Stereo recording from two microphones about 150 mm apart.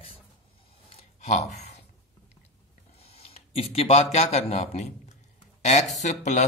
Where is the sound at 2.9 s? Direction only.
40° left (ahead or behind).